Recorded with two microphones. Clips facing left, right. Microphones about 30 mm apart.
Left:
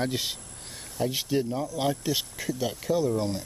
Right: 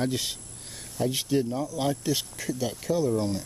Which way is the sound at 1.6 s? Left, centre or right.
Centre.